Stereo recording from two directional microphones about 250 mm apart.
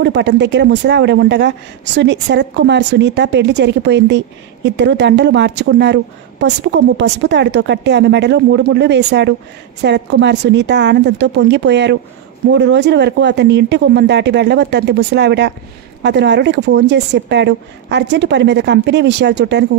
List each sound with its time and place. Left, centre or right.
0.0 s speech: right